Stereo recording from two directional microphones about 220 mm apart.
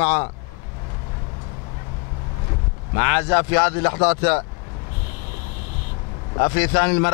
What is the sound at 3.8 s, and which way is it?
Speech, 30° left (ahead or behind).